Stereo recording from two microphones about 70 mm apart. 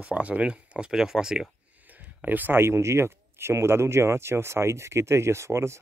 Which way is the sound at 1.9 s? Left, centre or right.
Right.